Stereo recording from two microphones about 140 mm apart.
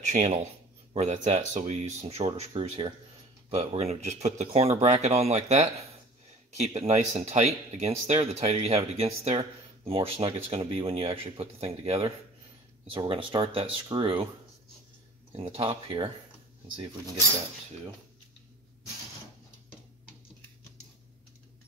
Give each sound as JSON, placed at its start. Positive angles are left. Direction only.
{"t": 0.0, "sound": "speech", "side_deg": -60}
{"t": 12.9, "sound": "speech", "side_deg": -35}
{"t": 15.3, "sound": "speech", "side_deg": -40}